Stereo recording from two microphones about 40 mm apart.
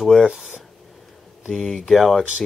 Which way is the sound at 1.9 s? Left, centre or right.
Centre.